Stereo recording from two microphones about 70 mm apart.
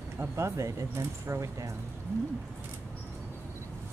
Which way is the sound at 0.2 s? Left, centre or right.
Right.